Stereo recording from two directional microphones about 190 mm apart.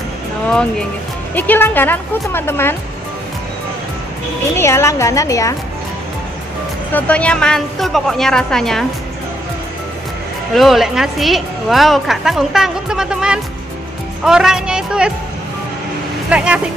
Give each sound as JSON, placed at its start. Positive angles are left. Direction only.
{"t": 1.3, "sound": "speech", "side_deg": 10}
{"t": 4.6, "sound": "speech", "side_deg": 15}
{"t": 6.9, "sound": "a woman's voice", "side_deg": 10}
{"t": 10.5, "sound": "a woman's voice", "side_deg": 0}
{"t": 16.3, "sound": "a woman's voice", "side_deg": -5}